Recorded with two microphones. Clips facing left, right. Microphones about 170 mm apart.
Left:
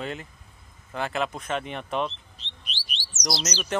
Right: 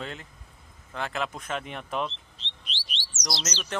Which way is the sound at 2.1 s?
25° right (ahead or behind).